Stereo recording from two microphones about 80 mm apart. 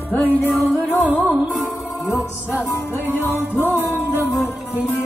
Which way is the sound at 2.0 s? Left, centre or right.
Left.